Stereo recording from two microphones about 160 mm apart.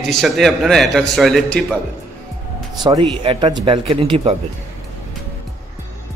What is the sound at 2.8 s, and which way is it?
A man's voice, 30° right (ahead or behind).